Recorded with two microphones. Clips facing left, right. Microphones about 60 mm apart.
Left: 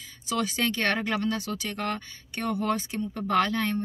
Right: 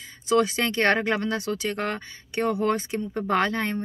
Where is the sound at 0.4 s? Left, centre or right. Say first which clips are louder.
Right 3 dB; right.